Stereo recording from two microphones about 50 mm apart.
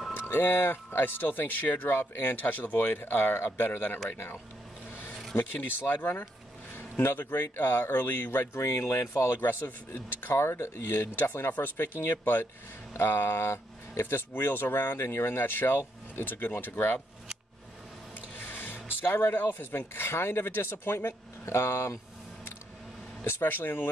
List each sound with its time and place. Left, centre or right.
0.1 s speech: left
6.7 s a sound: left
7.3 s speech: left
7.8 s speech: left
10.3 s speech: left
14.0 s speech: left
18.4 s a sound: left
19.0 s speech: left
19.3 s speech: left
23.2 s speech: left